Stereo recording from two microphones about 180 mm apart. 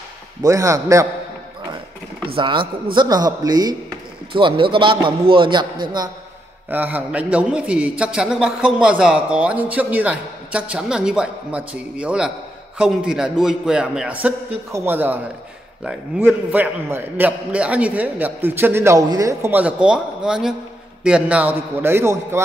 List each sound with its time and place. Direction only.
0.4 s a man's voice: 15° right (ahead or behind)
2.3 s a man's voice: 25° right (ahead or behind)
6.7 s a man's voice: 10° right (ahead or behind)